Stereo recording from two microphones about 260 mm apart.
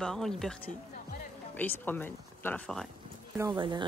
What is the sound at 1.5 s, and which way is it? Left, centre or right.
Speech, centre.